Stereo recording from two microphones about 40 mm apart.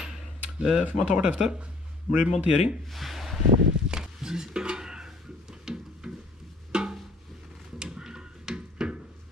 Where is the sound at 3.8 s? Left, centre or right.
Centre.